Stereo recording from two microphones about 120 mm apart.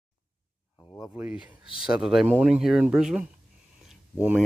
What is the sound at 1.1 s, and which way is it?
Speech, 10° right (ahead or behind).